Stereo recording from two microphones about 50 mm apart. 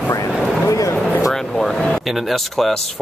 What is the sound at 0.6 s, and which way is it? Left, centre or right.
Speech, left.